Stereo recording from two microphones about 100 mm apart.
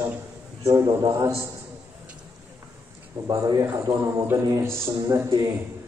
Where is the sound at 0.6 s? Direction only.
30° right (ahead or behind).